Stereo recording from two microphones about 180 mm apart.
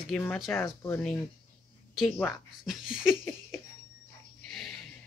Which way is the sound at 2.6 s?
5° right (ahead or behind).